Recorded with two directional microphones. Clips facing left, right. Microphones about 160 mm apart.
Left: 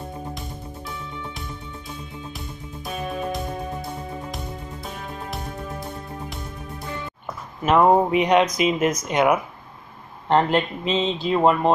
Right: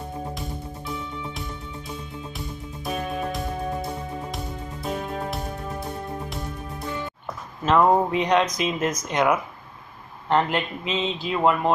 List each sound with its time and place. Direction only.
0.3 s music: centre (ahead or behind)
4.8 s music: centre (ahead or behind)
7.6 s speech: 10° left (ahead or behind)
10.3 s speech: 30° left (ahead or behind)